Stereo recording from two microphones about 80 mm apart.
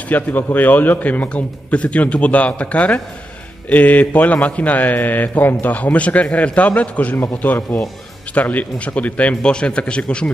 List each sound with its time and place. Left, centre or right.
0.1 s a man's voice: left